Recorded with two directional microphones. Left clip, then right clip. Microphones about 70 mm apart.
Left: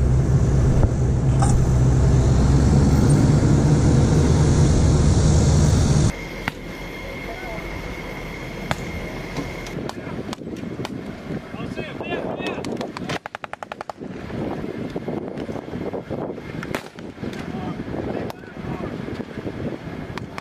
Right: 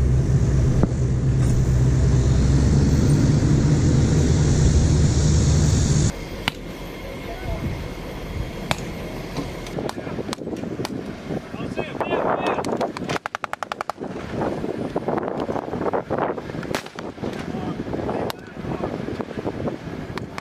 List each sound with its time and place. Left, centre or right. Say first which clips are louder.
0.4 s vehicle: even; centre
11.7 s boat: right 5 dB; centre
12.4 s a sound: right 5 dB; centre
15.9 s wind noise: right 7 dB; left